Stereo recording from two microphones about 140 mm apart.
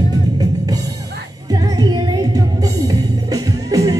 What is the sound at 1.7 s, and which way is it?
Music, 30° right (ahead or behind).